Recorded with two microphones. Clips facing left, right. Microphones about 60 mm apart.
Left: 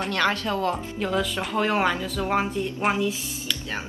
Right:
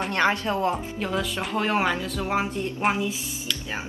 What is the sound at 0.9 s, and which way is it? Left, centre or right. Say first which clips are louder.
Speech: left 2 dB; centre.